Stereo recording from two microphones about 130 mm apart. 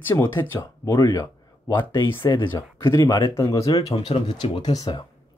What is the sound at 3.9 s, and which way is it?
Speech, 45° left (ahead or behind).